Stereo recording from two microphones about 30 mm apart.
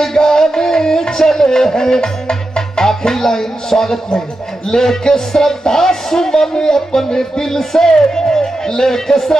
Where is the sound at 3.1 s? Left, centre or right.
Centre.